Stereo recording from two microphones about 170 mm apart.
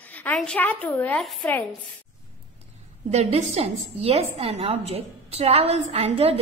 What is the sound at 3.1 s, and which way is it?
A woman's voice, 40° right (ahead or behind).